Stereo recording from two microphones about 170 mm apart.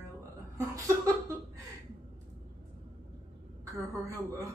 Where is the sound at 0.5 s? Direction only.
20° right (ahead or behind).